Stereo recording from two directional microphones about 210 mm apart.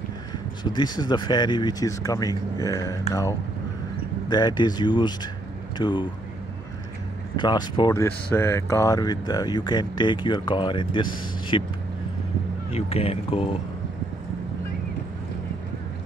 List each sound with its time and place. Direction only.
0.7 s speech: 20° left (ahead or behind)
4.3 s speech: 20° left (ahead or behind)
7.3 s speech: 20° left (ahead or behind)
12.7 s speech: 30° left (ahead or behind)